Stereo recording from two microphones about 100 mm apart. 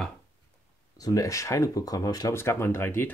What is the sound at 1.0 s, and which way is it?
Speech, 35° left (ahead or behind).